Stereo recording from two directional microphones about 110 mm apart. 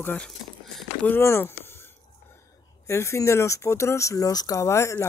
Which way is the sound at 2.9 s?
25° left (ahead or behind).